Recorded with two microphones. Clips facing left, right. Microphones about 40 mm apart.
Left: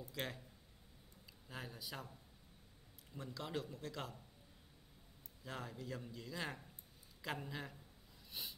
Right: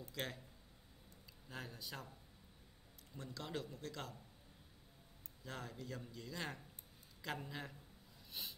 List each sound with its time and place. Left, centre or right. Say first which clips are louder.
0.1 s speech: even; centre
1.5 s a man's voice: even; centre
3.2 s a man's voice: left 2 dB; centre
5.4 s a man's voice: left 1 dB; centre
8.3 s snort: even; centre